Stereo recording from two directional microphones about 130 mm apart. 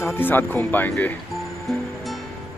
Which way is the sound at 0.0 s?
15° left (ahead or behind).